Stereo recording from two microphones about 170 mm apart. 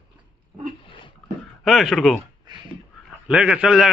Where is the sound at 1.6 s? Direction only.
Centre (ahead or behind).